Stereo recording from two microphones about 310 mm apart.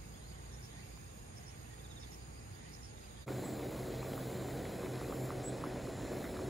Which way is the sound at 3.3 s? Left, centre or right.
Centre.